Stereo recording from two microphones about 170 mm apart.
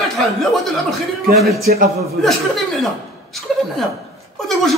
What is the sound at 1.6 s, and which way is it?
Speech, 65° right (ahead or behind).